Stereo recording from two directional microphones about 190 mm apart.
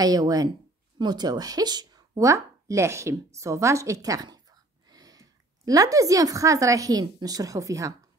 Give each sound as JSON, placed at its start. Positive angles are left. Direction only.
{"t": 0.0, "sound": "speech", "side_deg": -20}